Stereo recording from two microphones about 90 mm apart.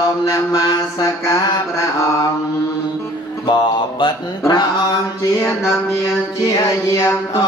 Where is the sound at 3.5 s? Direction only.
55° left (ahead or behind).